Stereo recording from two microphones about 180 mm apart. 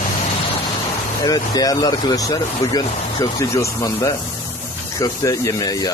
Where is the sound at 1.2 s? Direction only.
20° left (ahead or behind).